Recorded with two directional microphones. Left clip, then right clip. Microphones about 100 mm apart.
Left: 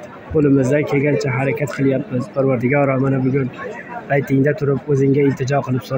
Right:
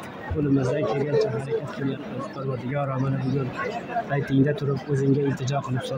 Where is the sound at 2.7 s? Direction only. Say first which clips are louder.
Left 9 dB; 35° left (ahead or behind).